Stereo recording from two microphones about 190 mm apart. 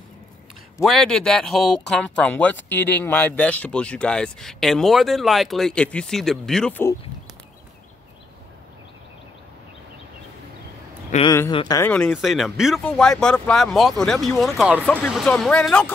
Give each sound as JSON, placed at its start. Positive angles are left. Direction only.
{"t": 0.8, "sound": "speech", "side_deg": 0}
{"t": 11.2, "sound": "speech", "side_deg": 15}
{"t": 11.9, "sound": "speech", "side_deg": 5}